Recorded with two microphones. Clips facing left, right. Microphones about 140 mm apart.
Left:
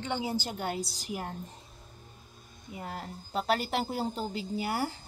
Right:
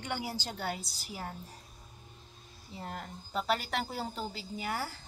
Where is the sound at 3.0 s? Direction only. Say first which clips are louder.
Left 3 dB; 40° left (ahead or behind).